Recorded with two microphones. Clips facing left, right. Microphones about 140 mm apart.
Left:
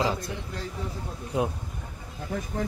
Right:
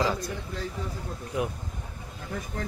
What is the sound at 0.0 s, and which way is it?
A man's voice, 25° left (ahead or behind).